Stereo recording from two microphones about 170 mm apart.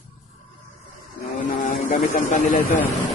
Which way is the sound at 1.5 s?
50° left (ahead or behind).